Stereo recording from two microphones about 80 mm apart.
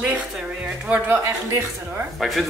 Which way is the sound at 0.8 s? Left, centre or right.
Centre.